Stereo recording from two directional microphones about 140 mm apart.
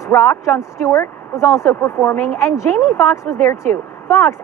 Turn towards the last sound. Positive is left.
turn(degrees=15)  # may be behind; listen again after turning